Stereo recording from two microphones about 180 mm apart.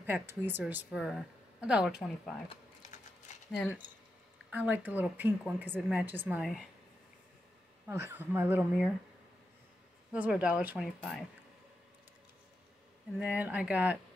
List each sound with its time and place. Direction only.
0.0 s speech: 10° right (ahead or behind)
3.3 s a sound: 40° left (ahead or behind)
4.5 s speech: 10° right (ahead or behind)
6.4 s speech: centre (ahead or behind)
7.8 s speech: 10° right (ahead or behind)
10.1 s speech: 10° right (ahead or behind)
13.2 s speech: 10° right (ahead or behind)